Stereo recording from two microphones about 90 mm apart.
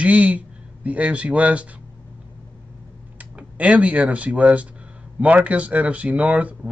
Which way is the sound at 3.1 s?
15° right (ahead or behind).